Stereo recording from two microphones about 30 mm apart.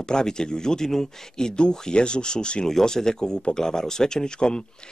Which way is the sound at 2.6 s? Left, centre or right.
Centre.